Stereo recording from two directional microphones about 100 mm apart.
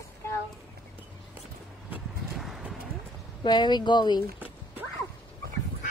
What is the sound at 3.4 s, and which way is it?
Speech, 50° left (ahead or behind).